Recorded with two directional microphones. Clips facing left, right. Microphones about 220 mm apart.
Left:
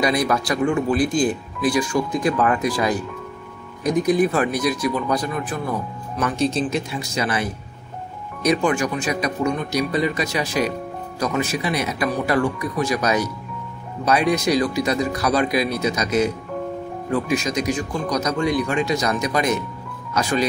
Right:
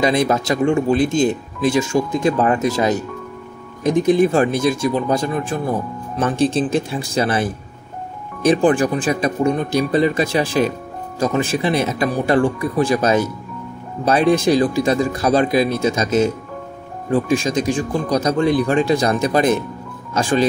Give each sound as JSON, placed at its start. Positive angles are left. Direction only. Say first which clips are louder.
{"t": 0.0, "sound": "speech", "louder": "right 3 dB", "side_deg": -25}
{"t": 8.5, "sound": "speech", "louder": "right 5 dB", "side_deg": -30}